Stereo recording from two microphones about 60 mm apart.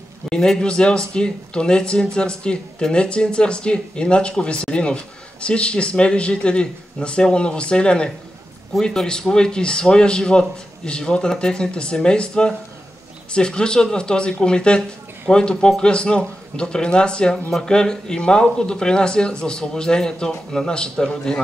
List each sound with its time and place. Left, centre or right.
0.3 s speech: centre
14.8 s speech: centre